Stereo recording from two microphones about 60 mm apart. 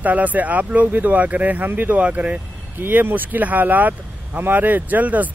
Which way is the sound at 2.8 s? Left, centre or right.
Right.